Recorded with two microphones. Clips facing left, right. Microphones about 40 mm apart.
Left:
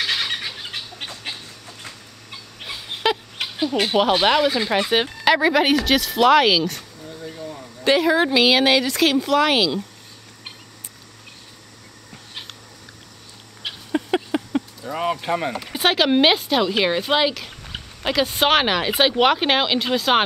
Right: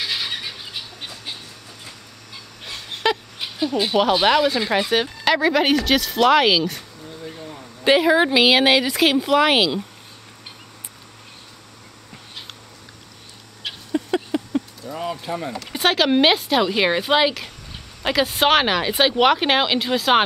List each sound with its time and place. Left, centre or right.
0.0 s bird: left
2.6 s dog: centre
3.4 s a sound: left
4.2 s speech: centre
4.6 s speech: centre
4.8 s speech: centre
13.9 s a sound: left
15.7 s speech: centre